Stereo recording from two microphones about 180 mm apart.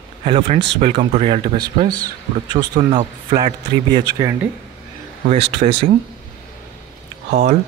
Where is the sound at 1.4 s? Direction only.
25° right (ahead or behind).